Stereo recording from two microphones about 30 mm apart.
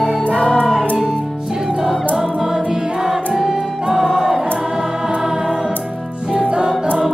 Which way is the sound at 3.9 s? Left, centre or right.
Centre.